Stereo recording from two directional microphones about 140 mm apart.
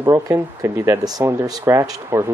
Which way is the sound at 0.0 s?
20° right (ahead or behind).